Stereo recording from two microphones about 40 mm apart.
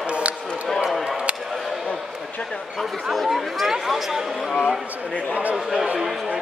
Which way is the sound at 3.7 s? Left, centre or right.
Centre.